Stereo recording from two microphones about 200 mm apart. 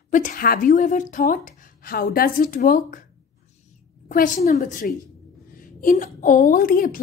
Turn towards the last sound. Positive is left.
turn(degrees=45)  # may be behind; listen again after turning